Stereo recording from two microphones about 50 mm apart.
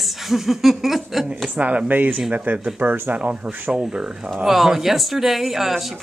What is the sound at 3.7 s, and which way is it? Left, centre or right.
Speech, centre.